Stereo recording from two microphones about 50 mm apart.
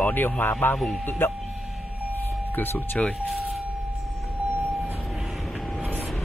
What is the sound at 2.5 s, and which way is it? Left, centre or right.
Speech, left.